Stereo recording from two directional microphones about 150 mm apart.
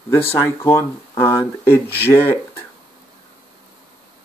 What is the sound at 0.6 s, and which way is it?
Speech, 15° left (ahead or behind).